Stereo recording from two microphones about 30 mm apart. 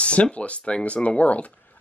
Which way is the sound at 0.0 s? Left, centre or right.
Left.